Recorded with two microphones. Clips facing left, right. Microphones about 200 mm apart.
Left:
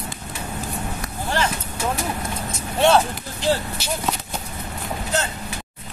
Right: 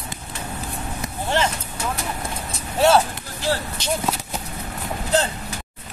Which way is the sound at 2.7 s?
5° right (ahead or behind).